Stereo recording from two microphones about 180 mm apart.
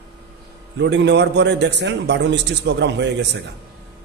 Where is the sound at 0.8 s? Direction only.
75° right (ahead or behind).